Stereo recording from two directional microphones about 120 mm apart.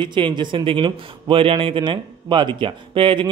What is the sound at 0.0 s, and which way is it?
A man's voice, 40° right (ahead or behind).